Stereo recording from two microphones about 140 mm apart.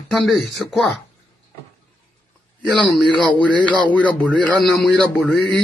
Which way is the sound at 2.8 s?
5° left (ahead or behind).